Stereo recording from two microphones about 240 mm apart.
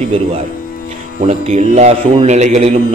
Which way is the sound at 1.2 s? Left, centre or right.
Right.